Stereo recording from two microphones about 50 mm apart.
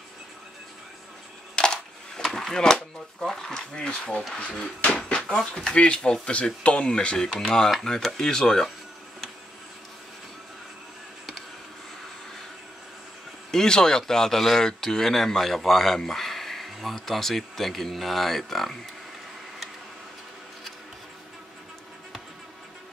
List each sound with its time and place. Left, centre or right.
1.5 s speech: centre
13.5 s a man's voice: centre